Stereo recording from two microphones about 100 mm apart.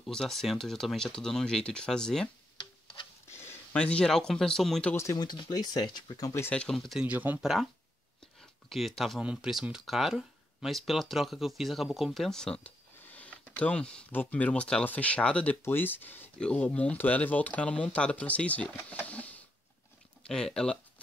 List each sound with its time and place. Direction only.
0.0 s speech: 5° left (ahead or behind)
2.5 s tick-tock: 55° left (ahead or behind)
3.3 s a sound: 25° left (ahead or behind)
3.7 s speech: 10° left (ahead or behind)
5.1 s speech: 40° left (ahead or behind)
6.5 s speech: 5° left (ahead or behind)
7.0 s speech: 15° right (ahead or behind)
8.4 s a sound: centre (ahead or behind)
9.2 s speech: 10° right (ahead or behind); by 20.8 s 5° left (ahead or behind)